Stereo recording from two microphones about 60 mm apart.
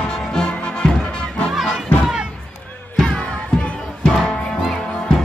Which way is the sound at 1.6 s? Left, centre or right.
Centre.